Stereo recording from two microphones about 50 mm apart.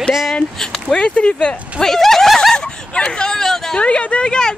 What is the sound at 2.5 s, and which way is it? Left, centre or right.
Speech, centre.